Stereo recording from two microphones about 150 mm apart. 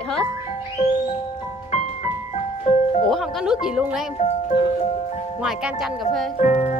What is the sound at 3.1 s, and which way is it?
Speech, centre (ahead or behind).